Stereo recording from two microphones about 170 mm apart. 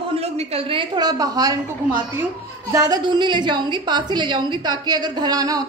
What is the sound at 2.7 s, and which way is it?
A woman's voice, 25° right (ahead or behind).